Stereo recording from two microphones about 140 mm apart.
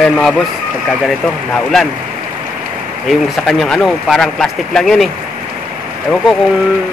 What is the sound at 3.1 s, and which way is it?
Speech, centre (ahead or behind).